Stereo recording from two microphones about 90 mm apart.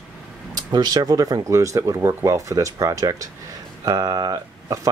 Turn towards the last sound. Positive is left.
turn(degrees=-45)  # may be behind; listen again after turning